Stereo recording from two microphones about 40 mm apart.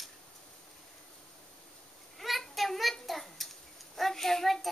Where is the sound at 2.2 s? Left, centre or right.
Centre.